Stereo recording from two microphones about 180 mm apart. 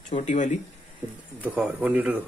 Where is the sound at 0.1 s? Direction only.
40° left (ahead or behind).